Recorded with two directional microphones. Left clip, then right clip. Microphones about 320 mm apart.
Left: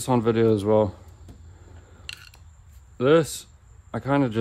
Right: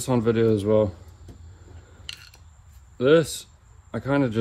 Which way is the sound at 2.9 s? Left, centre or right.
Left.